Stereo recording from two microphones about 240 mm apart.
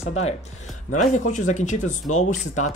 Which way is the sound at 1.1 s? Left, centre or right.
Left.